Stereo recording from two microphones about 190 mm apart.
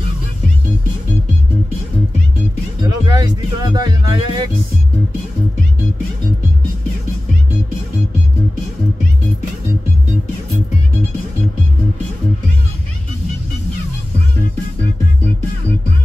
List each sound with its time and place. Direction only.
2.9 s music: 20° right (ahead or behind)